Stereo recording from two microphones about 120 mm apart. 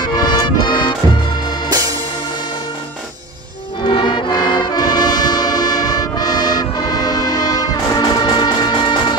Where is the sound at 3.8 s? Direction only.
45° left (ahead or behind).